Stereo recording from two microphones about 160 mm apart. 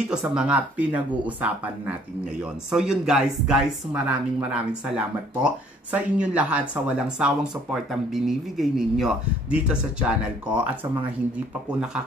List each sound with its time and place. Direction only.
0.1 s speech: 5° right (ahead or behind)